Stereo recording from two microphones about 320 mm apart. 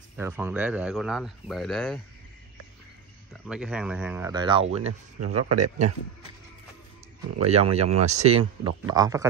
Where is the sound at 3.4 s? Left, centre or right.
Centre.